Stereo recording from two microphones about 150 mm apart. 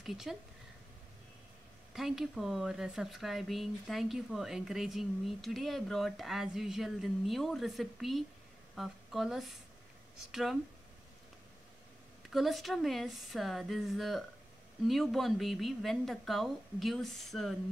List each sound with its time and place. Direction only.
0.0 s speech: centre (ahead or behind)
2.0 s speech: centre (ahead or behind)
12.3 s speech: centre (ahead or behind)